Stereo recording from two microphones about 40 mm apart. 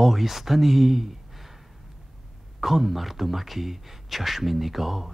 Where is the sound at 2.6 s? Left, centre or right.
Centre.